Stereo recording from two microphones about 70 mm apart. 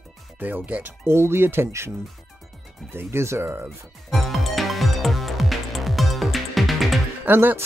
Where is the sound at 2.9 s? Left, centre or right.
Right.